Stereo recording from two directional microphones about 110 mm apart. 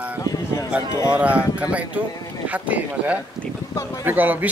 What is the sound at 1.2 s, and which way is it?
Speech, 10° right (ahead or behind).